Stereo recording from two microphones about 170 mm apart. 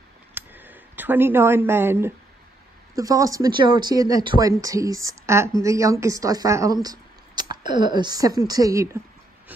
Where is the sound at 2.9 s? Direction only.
20° right (ahead or behind).